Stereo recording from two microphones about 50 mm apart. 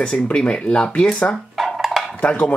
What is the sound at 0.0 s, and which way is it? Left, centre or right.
Speech, centre.